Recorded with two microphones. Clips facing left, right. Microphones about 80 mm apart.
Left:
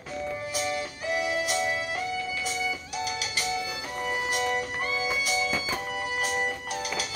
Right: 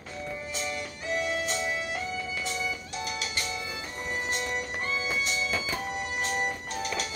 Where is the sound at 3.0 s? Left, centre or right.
Centre.